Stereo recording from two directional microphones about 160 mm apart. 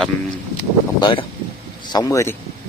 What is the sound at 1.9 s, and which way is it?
Speech, 20° left (ahead or behind).